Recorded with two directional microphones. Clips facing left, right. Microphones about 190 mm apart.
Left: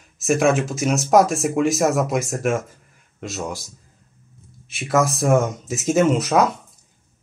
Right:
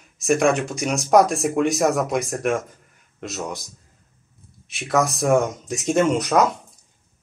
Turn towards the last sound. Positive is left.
turn(degrees=0)  # may be behind; listen again after turning